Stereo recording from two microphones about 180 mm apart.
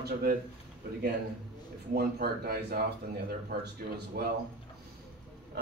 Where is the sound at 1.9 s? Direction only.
60° right (ahead or behind).